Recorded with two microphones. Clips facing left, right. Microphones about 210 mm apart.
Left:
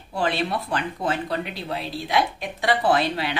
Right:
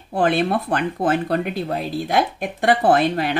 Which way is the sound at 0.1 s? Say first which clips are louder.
Right 6 dB; 50° right (ahead or behind).